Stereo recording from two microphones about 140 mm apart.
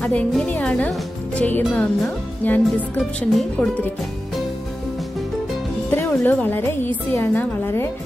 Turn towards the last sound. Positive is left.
turn(degrees=15)  # may be behind; listen again after turning